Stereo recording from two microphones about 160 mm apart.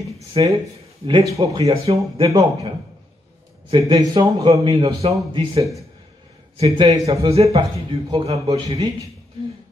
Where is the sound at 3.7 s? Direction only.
30° right (ahead or behind).